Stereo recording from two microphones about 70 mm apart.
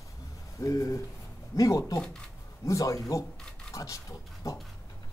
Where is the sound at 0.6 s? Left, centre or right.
Left.